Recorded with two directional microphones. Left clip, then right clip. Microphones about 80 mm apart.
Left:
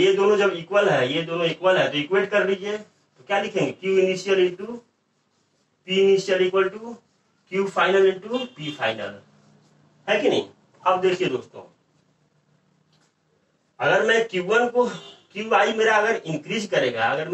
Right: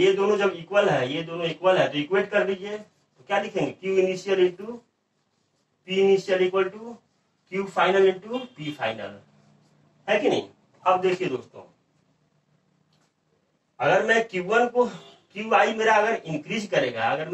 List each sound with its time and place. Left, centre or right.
0.0 s a man's voice: left
5.9 s a man's voice: left
13.7 s a man's voice: left